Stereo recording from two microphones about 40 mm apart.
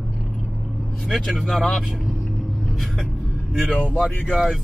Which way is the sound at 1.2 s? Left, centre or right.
Centre.